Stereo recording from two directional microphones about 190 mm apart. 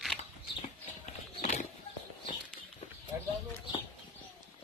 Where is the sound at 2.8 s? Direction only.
35° left (ahead or behind).